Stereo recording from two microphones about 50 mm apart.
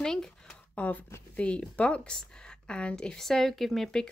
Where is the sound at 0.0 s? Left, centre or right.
Centre.